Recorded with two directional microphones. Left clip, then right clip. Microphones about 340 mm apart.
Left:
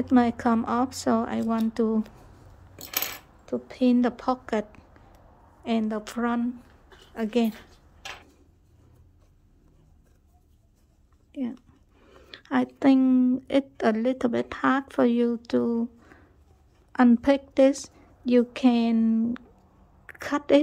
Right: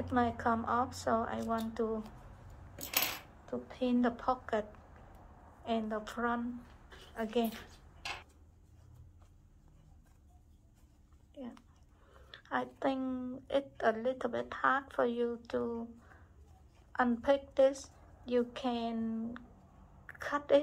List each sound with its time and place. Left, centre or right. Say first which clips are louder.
0.1 s speech: left 8 dB; left
3.4 s speech: left 11 dB; left
12.1 s a woman's voice: left 8 dB; left